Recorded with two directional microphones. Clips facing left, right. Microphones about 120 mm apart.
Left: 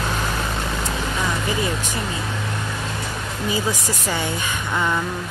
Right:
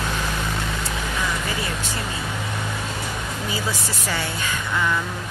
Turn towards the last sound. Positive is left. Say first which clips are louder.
# left 1 dB
turn(degrees=20)  # may be behind; listen again after turning